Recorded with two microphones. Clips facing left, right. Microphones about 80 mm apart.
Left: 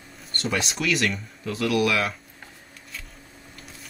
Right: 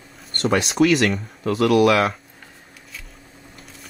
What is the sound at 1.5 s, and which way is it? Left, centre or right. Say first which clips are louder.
Speech: right 7 dB; right.